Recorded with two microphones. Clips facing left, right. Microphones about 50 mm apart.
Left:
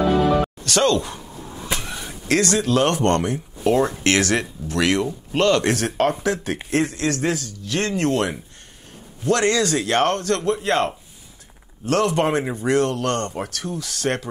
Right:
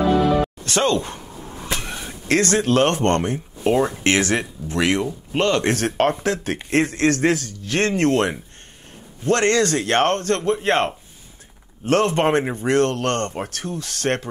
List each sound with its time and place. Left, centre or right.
0.7 s speech: right
2.2 s a man's voice: right
5.8 s a man's voice: right